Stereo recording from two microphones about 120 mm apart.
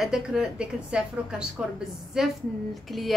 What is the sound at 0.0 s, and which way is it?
A man's voice, 5° right (ahead or behind).